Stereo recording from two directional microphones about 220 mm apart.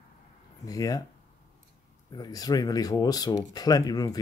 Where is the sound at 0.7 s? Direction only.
15° left (ahead or behind).